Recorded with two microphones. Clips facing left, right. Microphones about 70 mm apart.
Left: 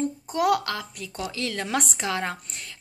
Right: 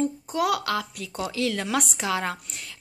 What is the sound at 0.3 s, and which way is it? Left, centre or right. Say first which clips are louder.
A woman's voice: left 3 dB; centre.